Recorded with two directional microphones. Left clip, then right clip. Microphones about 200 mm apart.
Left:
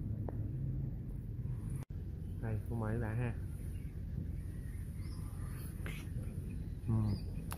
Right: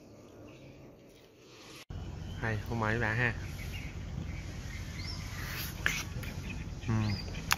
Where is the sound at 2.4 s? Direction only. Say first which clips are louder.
Right 10 dB; 5° right (ahead or behind).